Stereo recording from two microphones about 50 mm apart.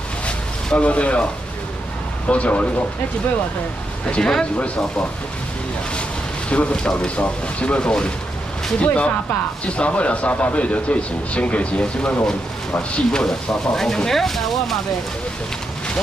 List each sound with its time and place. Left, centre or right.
0.7 s a man's voice: left
2.2 s a man's voice: left
4.2 s speech: centre
6.5 s a man's voice: left; by 14.8 s centre